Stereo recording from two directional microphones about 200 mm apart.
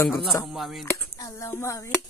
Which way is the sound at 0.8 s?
15° left (ahead or behind).